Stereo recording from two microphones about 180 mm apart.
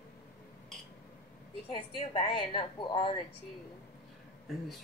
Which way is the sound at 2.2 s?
30° left (ahead or behind).